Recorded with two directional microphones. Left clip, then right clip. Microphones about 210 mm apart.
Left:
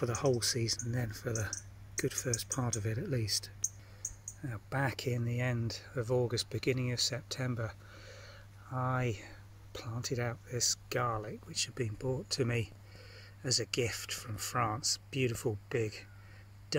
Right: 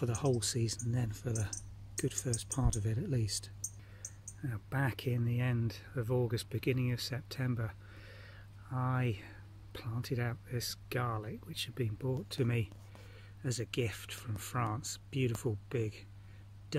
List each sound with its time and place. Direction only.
0.0 s speech: 5° right (ahead or behind)
3.2 s speech: 25° right (ahead or behind)
4.4 s speech: 5° right (ahead or behind)